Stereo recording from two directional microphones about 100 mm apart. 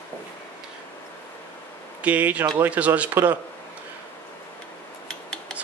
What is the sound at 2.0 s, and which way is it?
A man's voice, 15° right (ahead or behind).